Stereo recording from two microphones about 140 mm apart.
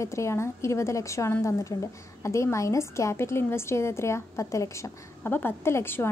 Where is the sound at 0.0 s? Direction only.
20° left (ahead or behind).